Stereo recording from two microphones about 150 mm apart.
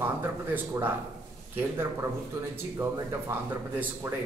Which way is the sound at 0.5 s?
15° right (ahead or behind).